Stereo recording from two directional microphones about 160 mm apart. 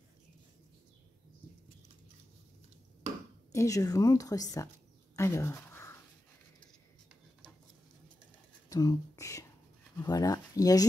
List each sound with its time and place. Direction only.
3.5 s a woman's voice: 20° left (ahead or behind)
5.1 s a sound: 15° left (ahead or behind)
8.6 s a woman's voice: 25° left (ahead or behind)